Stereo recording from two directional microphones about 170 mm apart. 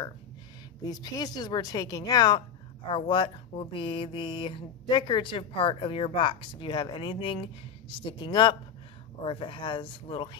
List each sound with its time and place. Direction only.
0.8 s speech: 25° left (ahead or behind)